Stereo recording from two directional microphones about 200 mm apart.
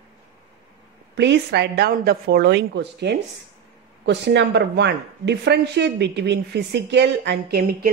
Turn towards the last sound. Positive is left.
turn(degrees=-50)  # may be behind; listen again after turning